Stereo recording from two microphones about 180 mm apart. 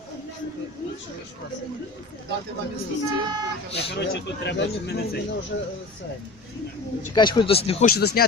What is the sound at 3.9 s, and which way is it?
Speech, 65° left (ahead or behind).